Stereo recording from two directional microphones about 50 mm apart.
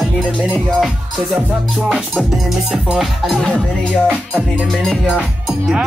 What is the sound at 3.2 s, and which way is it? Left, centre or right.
Speech, centre.